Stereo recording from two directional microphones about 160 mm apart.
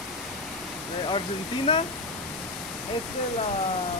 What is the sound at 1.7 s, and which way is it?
Speech, 35° left (ahead or behind).